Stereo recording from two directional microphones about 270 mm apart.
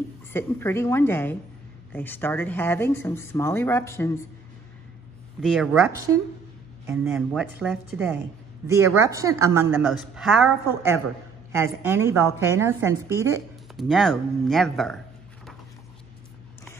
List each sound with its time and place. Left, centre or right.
0.3 s speech: centre
5.4 s a woman's voice: centre